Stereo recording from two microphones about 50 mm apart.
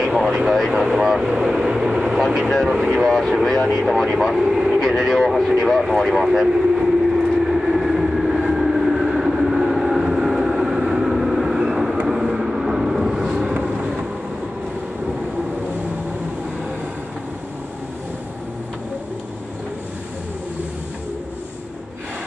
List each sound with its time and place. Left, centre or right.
0.0 s speech: centre
2.2 s speech: centre
4.4 s speech: centre
4.8 s speech: centre
5.6 s vehicle: centre